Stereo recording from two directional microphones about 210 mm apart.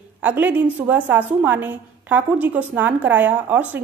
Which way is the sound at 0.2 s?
10° right (ahead or behind).